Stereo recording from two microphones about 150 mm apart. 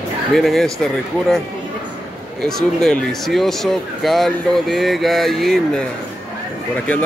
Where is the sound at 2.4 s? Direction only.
5° left (ahead or behind).